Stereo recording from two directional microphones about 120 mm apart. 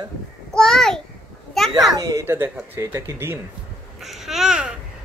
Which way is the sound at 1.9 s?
30° right (ahead or behind).